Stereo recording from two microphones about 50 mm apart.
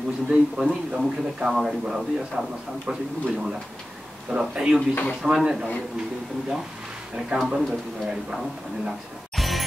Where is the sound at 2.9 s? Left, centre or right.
Right.